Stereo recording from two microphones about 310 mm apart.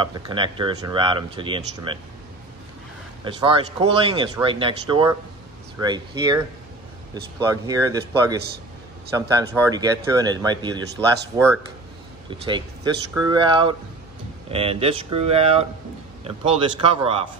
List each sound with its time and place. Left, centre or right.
0.3 s speech: centre
3.3 s speech: centre